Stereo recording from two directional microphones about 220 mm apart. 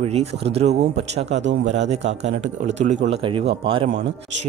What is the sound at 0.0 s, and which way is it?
Speech, 30° right (ahead or behind).